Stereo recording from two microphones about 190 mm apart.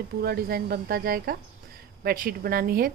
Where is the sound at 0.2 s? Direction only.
55° right (ahead or behind).